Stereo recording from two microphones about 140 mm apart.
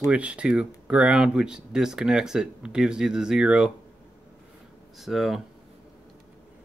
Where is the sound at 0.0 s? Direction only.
10° right (ahead or behind).